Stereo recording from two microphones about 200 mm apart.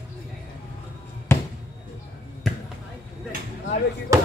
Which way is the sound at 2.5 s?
Centre (ahead or behind).